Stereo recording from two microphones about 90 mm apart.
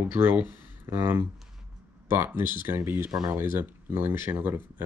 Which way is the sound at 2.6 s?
25° right (ahead or behind).